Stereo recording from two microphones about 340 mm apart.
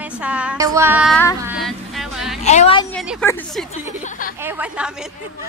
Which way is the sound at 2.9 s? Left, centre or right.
Centre.